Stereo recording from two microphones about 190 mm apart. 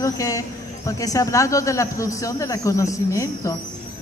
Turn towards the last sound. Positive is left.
turn(degrees=15)  # may be behind; listen again after turning